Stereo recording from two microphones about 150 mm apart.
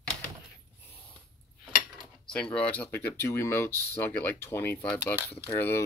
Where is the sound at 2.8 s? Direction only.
15° left (ahead or behind).